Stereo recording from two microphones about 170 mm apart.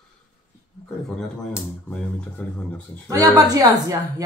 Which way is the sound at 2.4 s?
10° left (ahead or behind).